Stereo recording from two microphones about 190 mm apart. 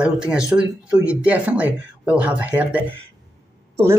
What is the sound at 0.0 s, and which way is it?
Speech, 5° right (ahead or behind).